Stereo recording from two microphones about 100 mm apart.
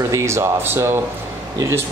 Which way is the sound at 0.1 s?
30° right (ahead or behind).